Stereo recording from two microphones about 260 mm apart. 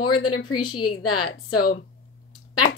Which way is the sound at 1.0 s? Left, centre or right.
Left.